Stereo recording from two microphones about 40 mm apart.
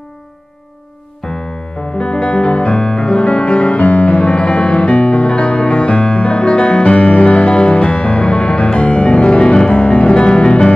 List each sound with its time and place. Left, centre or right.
1.2 s music: centre